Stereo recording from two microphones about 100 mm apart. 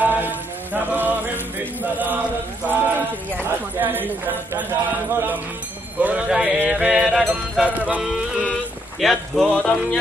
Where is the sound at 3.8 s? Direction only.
20° right (ahead or behind).